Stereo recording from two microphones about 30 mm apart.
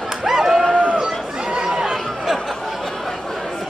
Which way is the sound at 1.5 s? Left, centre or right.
Right.